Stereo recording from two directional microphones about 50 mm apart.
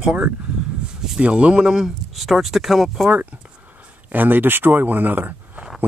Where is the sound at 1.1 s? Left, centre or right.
Centre.